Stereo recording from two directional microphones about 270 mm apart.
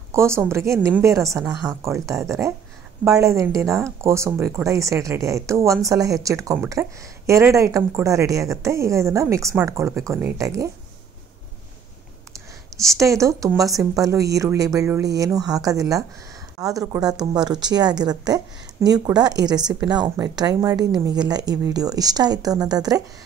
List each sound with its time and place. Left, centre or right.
0.1 s speech: centre
12.3 s speech: centre